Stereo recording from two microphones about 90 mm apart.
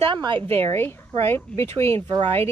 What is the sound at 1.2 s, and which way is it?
Speech, 25° left (ahead or behind).